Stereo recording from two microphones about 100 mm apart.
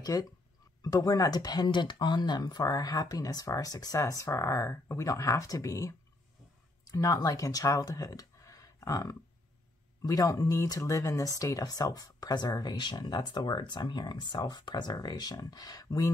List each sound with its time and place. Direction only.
0.0 s speech: 35° left (ahead or behind)